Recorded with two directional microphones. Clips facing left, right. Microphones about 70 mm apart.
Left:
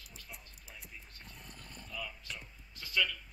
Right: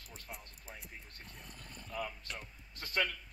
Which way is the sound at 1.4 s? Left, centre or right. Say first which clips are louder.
Left 1 dB; centre.